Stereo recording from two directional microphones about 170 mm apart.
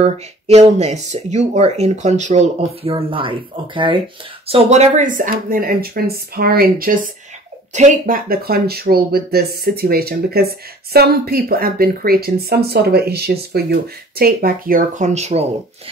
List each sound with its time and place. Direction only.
0.0 s speech: 40° right (ahead or behind); by 7.0 s 60° right (ahead or behind)
7.7 s speech: 45° right (ahead or behind)